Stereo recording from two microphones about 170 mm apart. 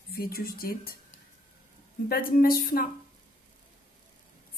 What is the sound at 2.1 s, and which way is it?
Speech, 60° left (ahead or behind).